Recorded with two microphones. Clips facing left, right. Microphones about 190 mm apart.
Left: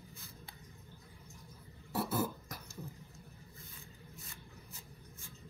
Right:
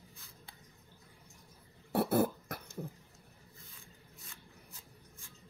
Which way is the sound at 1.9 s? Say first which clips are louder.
Right 6 dB; 60° right (ahead or behind).